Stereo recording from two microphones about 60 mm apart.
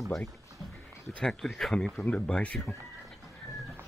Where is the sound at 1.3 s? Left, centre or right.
Centre.